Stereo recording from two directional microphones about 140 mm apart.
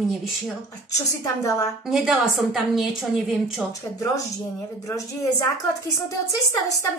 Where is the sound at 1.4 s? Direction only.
20° left (ahead or behind).